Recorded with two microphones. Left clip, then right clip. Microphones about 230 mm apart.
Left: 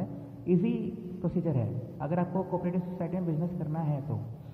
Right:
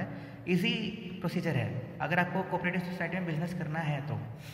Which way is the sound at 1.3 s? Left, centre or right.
Right.